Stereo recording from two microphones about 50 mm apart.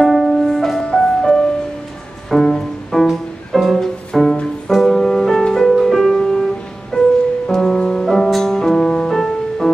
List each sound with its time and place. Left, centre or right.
0.0 s music: centre; by 7.1 s left
7.4 s music: centre